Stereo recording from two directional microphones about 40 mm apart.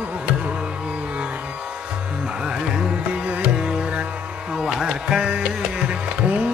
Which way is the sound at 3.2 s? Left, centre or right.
Right.